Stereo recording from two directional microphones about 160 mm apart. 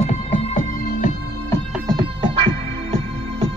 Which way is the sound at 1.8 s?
30° right (ahead or behind).